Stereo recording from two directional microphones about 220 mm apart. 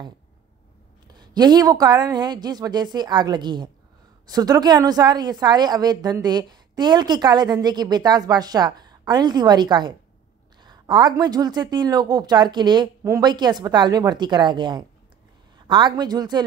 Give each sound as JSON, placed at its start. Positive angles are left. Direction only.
{"t": 1.0, "sound": "a woman's voice", "side_deg": -20}